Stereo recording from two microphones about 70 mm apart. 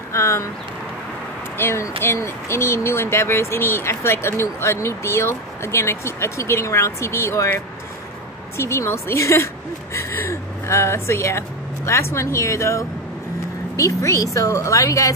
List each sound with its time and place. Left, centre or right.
0.1 s speech: left
1.6 s speech: left
8.5 s a woman's voice: left